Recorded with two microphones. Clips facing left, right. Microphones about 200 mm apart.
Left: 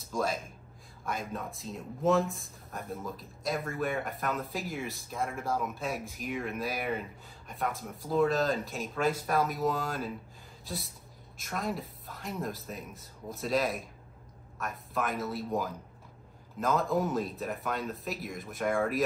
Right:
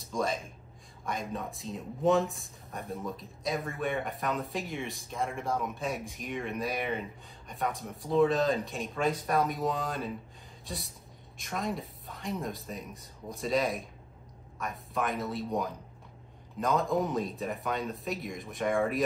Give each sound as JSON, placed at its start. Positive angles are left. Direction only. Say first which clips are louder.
{"t": 0.0, "sound": "speech", "louder": "even", "side_deg": 0}